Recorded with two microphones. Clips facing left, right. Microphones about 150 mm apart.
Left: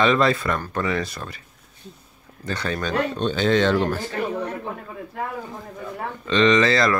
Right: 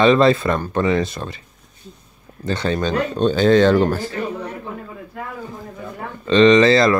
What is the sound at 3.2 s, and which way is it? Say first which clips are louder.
Speech: right 8 dB; 40° right (ahead or behind).